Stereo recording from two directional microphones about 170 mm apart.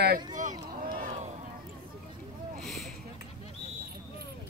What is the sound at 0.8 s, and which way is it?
Run, 55° right (ahead or behind).